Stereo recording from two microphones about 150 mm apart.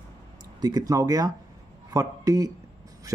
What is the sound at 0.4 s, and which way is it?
A man's voice, 25° right (ahead or behind).